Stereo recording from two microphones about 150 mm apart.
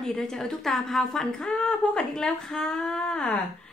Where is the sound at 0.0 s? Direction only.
5° left (ahead or behind).